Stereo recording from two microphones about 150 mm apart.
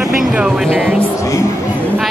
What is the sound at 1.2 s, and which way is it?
Speech, 20° left (ahead or behind).